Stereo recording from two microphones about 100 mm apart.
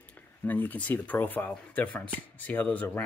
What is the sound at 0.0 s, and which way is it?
Speech, 15° left (ahead or behind).